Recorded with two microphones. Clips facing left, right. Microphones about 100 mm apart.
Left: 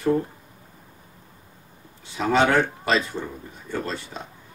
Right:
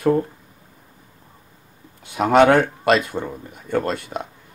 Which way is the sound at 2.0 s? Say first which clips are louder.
Right 6 dB; 55° right (ahead or behind).